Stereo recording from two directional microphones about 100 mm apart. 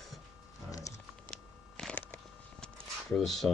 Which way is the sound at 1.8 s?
10° left (ahead or behind).